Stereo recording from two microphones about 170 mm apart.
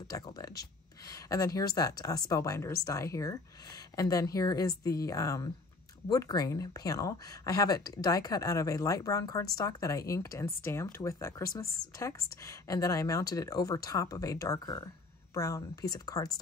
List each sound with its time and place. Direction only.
0.1 s speech: 20° left (ahead or behind)